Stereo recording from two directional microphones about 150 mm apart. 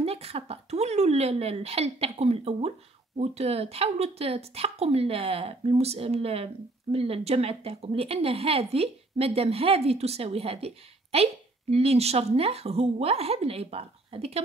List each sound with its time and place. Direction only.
0.0 s speech: 40° right (ahead or behind)